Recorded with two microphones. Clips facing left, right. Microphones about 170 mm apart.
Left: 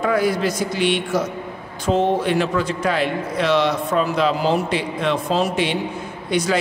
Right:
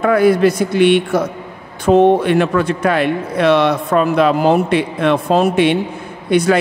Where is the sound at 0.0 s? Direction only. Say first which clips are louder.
Right 7 dB; 60° right (ahead or behind).